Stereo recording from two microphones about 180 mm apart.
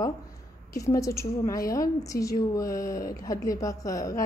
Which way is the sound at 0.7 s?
20° left (ahead or behind).